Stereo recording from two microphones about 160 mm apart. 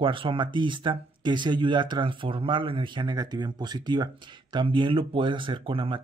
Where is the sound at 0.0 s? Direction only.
35° right (ahead or behind).